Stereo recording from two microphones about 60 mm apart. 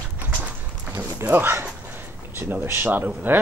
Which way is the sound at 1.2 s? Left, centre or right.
Right.